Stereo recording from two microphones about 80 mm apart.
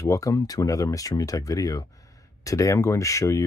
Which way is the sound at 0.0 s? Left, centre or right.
Left.